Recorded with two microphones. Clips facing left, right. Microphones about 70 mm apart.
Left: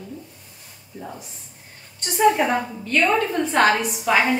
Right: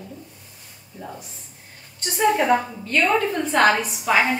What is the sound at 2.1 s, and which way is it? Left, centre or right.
A woman's voice, centre.